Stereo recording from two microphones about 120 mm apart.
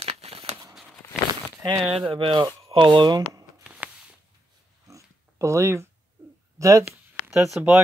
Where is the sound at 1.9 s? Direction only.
50° right (ahead or behind).